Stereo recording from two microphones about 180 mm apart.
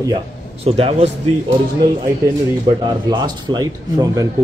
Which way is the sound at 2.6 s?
25° right (ahead or behind).